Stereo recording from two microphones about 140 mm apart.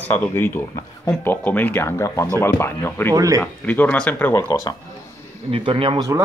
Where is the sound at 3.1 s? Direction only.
25° right (ahead or behind).